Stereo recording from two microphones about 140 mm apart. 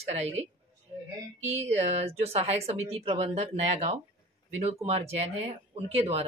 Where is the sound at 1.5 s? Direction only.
50° right (ahead or behind).